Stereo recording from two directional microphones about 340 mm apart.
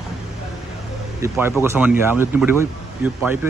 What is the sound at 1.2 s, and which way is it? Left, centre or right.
Speech, centre.